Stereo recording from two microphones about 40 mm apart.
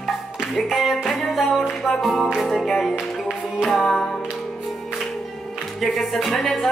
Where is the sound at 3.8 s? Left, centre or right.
Centre.